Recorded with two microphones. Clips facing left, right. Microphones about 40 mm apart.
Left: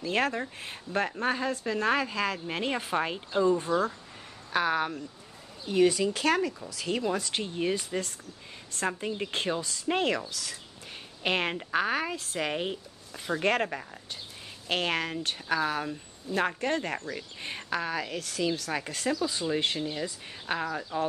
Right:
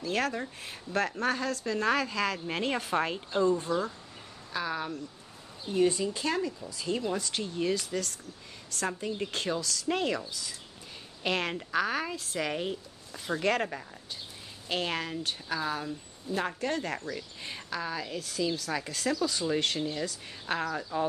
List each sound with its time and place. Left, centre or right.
0.0 s speech: left
2.3 s speech: centre
3.7 s speech: left
4.5 s speech: left
5.7 s speech: left
7.0 s a woman's voice: left
7.6 s a woman's voice: left
10.0 s speech: left
11.2 s a woman's voice: left
14.7 s speech: left
15.9 s a woman's voice: left
18.7 s a woman's voice: left
19.0 s speech: centre
20.5 s speech: centre